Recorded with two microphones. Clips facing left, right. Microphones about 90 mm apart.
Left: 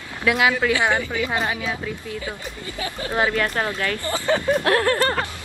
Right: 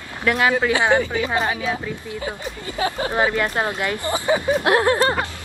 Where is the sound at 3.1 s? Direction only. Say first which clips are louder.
Left 1 dB; 15° right (ahead or behind).